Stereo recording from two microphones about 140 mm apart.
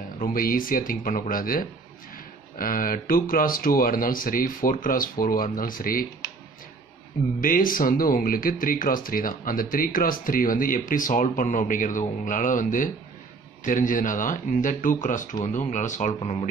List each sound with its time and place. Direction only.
0.2 s speech: 90° left
7.3 s speech: 80° left; by 16.4 s 50° left (ahead or behind)